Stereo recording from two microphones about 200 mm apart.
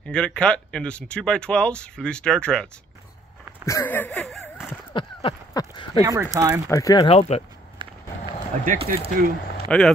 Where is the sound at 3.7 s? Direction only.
10° left (ahead or behind).